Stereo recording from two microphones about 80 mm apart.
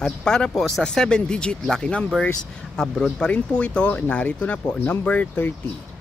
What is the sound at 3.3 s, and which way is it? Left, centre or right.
Speech, centre.